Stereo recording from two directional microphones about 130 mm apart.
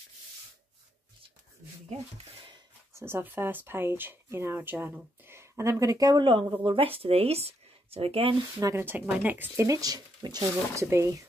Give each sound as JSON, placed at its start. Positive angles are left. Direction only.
{"t": 2.9, "sound": "speech", "side_deg": -20}
{"t": 6.3, "sound": "speech", "side_deg": -45}
{"t": 8.5, "sound": "speech", "side_deg": -20}